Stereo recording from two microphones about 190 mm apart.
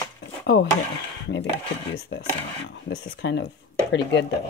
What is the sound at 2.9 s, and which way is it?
Speech, 65° left (ahead or behind).